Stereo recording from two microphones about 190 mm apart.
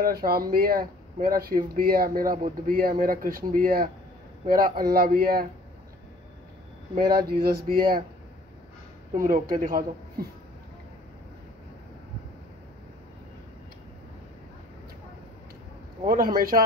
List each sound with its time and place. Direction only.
0.0 s speech: 50° right (ahead or behind)
7.0 s speech: 50° right (ahead or behind)
9.1 s speech: 45° right (ahead or behind)
16.1 s speech: 50° right (ahead or behind)